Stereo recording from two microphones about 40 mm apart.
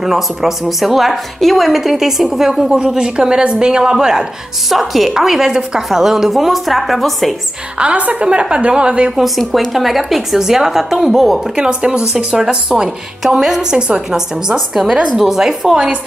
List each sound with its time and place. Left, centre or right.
0.0 s a woman's voice: centre
2.9 s a woman's voice: centre
4.6 s a woman's voice: centre
7.8 s a woman's voice: right
9.1 s a woman's voice: centre
11.5 s a woman's voice: right